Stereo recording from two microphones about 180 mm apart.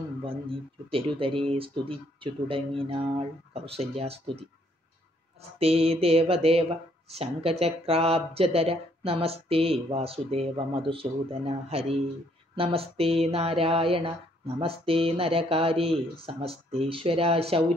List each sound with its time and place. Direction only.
0.9 s speech: 30° right (ahead or behind)
5.6 s speech: 35° right (ahead or behind)